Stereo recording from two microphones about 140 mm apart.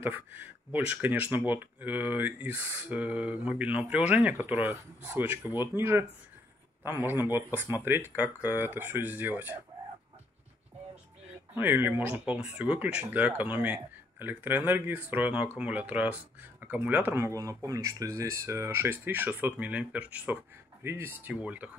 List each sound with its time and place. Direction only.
0.0 s speech: 15° right (ahead or behind)
7.1 s speech: 15° right (ahead or behind)
11.5 s speech: 15° right (ahead or behind)